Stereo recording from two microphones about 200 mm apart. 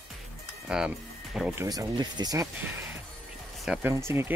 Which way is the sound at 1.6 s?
20° right (ahead or behind).